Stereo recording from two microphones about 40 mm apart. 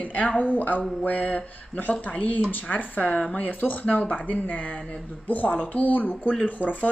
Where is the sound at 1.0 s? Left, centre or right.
Left.